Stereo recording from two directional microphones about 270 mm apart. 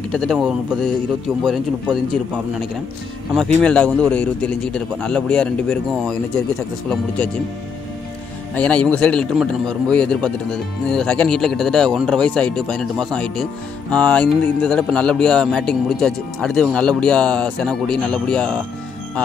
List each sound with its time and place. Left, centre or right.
0.1 s speech: centre
8.5 s speech: centre